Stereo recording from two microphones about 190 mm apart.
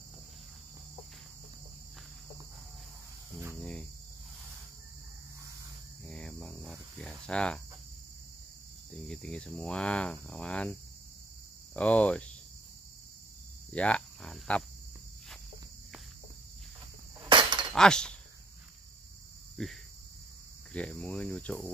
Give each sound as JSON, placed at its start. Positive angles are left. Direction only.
{"t": 6.0, "sound": "cricket", "side_deg": 5}
{"t": 8.9, "sound": "speech", "side_deg": 5}
{"t": 11.7, "sound": "cricket", "side_deg": 5}
{"t": 13.7, "sound": "cricket", "side_deg": 5}
{"t": 17.2, "sound": "breaking", "side_deg": -25}
{"t": 17.7, "sound": "speech", "side_deg": 5}
{"t": 19.5, "sound": "cricket", "side_deg": 0}